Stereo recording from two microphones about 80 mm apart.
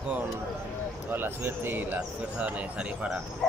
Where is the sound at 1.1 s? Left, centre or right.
Right.